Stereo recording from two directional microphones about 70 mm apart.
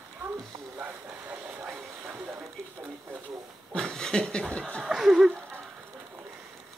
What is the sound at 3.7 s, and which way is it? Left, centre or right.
Laughter, centre.